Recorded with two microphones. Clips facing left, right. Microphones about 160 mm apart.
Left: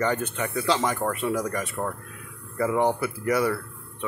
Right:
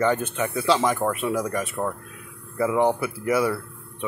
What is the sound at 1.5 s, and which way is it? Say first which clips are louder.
Speech: right 3 dB; 20° right (ahead or behind).